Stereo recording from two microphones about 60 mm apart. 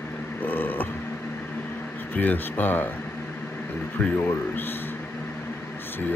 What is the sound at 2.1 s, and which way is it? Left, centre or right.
Speech, left.